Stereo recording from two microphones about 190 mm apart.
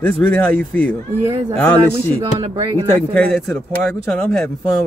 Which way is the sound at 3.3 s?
5° left (ahead or behind).